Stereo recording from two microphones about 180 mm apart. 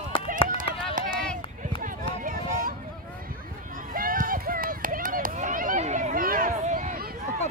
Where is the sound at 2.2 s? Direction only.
50° right (ahead or behind).